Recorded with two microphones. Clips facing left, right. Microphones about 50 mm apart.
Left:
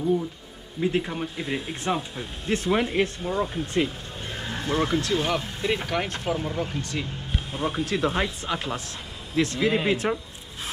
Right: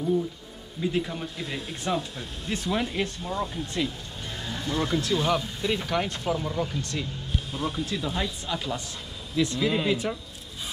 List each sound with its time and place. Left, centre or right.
0.7 s speech: left
2.5 s speech: left
4.4 s music: left
5.1 s speech: left
7.0 s a sound: left
7.9 s speech: left